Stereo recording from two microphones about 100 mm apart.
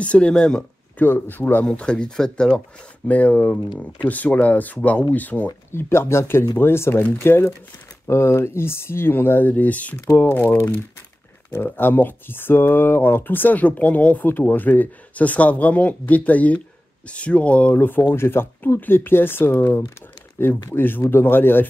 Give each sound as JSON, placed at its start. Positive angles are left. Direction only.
{"t": 0.0, "sound": "speech", "side_deg": 10}
{"t": 0.9, "sound": "speech", "side_deg": 20}